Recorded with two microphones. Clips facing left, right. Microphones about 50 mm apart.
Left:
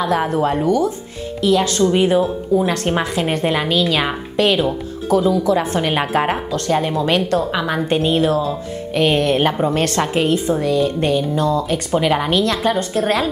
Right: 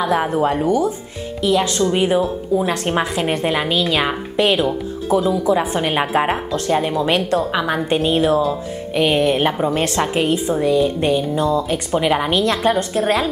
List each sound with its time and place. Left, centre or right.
0.0 s a woman's voice: centre
0.7 s a woman's voice: right
1.8 s speech: centre
3.7 s a woman's voice: centre
7.1 s a woman's voice: centre
7.5 s a woman's voice: centre
8.1 s a woman's voice: right
8.4 s a woman's voice: centre
12.4 s a woman's voice: right
13.0 s speech: centre